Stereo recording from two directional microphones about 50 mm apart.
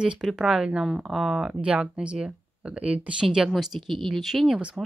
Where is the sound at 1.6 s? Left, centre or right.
Right.